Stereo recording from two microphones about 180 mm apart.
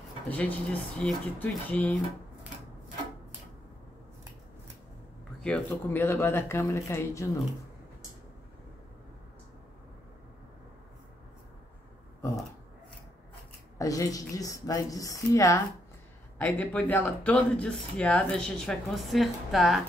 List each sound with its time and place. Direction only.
0.3 s speech: 10° left (ahead or behind)
5.4 s speech: 10° left (ahead or behind)
13.7 s a woman's voice: 20° left (ahead or behind); by 19.8 s centre (ahead or behind)